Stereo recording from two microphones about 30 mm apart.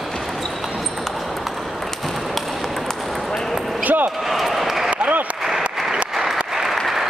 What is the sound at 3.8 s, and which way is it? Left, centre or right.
Basketball bounce, right.